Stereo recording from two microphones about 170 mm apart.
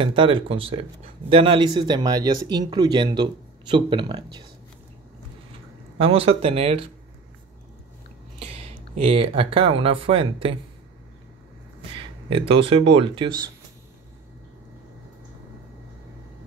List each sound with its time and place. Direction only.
0.0 s speech: 30° right (ahead or behind)
5.9 s speech: 35° right (ahead or behind)
8.4 s speech: 35° right (ahead or behind)
12.0 s speech: 30° right (ahead or behind)